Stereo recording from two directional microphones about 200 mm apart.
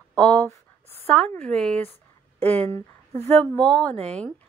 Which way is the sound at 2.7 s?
30° right (ahead or behind).